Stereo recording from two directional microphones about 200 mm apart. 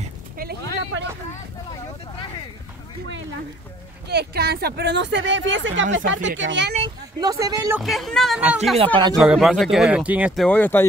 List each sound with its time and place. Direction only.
0.4 s a sound: 50° right (ahead or behind)
4.1 s speech: 55° right (ahead or behind)
7.2 s speech: 15° right (ahead or behind)
7.8 s speech: centre (ahead or behind)
8.7 s speech: 25° right (ahead or behind)
9.2 s speech: centre (ahead or behind)